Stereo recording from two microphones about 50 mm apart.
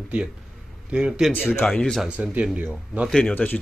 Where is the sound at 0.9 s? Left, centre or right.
Right.